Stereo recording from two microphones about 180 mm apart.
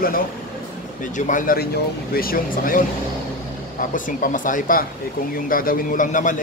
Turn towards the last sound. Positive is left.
turn(degrees=45)  # may be behind; listen again after turning